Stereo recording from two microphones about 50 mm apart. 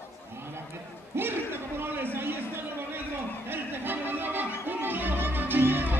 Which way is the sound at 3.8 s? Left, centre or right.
Right.